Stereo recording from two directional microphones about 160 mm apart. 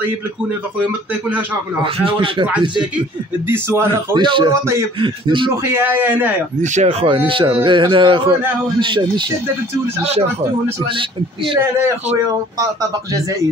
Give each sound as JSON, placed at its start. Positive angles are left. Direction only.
{"t": 1.8, "sound": "speech", "side_deg": -30}
{"t": 3.4, "sound": "a man's voice", "side_deg": -15}
{"t": 4.2, "sound": "a man's voice", "side_deg": -30}
{"t": 5.7, "sound": "a man's voice", "side_deg": -10}
{"t": 6.6, "sound": "speech", "side_deg": -45}